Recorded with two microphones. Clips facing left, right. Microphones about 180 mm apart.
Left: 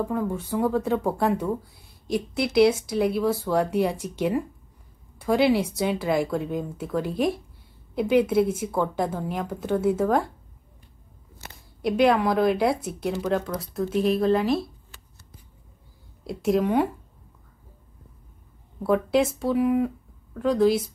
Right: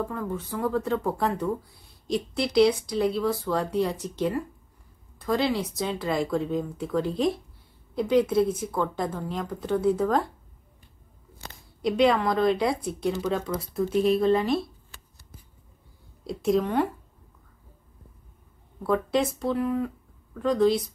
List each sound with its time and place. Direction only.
0.0 s a woman's voice: 15° left (ahead or behind)
11.8 s speech: 5° left (ahead or behind)
16.3 s speech: centre (ahead or behind)
18.8 s a woman's voice: 5° left (ahead or behind)